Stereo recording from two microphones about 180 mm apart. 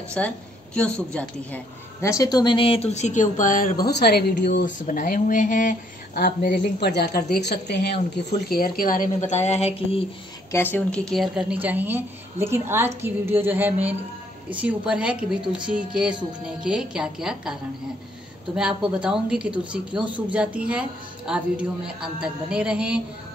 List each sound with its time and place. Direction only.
0.7 s a woman's voice: 5° left (ahead or behind); by 4.6 s 60° left (ahead or behind)
4.6 s speech: 45° left (ahead or behind); by 8.0 s 65° left (ahead or behind)
8.5 s speech: 55° left (ahead or behind); by 10.0 s 35° left (ahead or behind)
10.5 s a woman's voice: 10° left (ahead or behind)
18.6 s a man's voice: 5° right (ahead or behind)